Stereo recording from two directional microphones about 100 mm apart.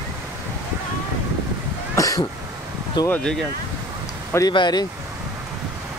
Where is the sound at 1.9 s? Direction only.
35° left (ahead or behind).